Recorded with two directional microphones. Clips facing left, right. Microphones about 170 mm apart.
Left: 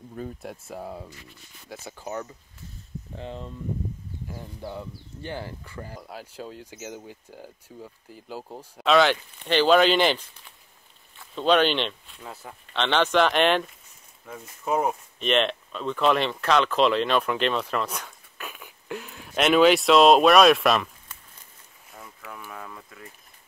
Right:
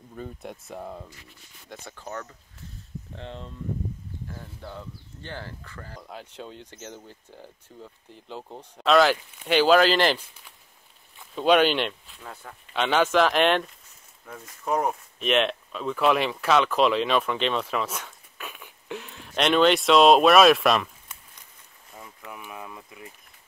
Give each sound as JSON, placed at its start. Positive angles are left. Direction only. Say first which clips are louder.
{"t": 0.1, "sound": "speech", "louder": "left 2 dB", "side_deg": 0}
{"t": 12.2, "sound": "speech", "louder": "left 1 dB", "side_deg": 10}
{"t": 12.7, "sound": "speech", "louder": "even", "side_deg": -10}
{"t": 22.3, "sound": "speech", "louder": "even", "side_deg": -15}